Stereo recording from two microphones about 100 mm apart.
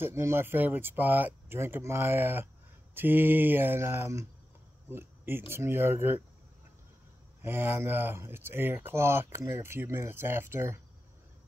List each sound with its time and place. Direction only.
0.0 s speech: 25° right (ahead or behind)
4.8 s a sound: 20° right (ahead or behind)
5.5 s speech: 25° right (ahead or behind)
7.4 s speech: 20° right (ahead or behind)